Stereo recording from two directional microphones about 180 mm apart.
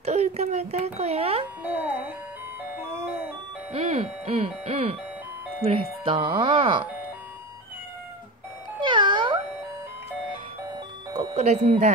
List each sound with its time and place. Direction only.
0.0 s speech: 35° right (ahead or behind)
1.6 s speech: 10° right (ahead or behind)
3.7 s speech: 35° right (ahead or behind)
8.8 s music: 25° right (ahead or behind)
11.3 s speech: 35° right (ahead or behind)